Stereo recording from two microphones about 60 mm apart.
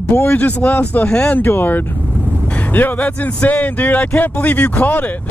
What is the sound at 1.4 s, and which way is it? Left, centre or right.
Speech, left.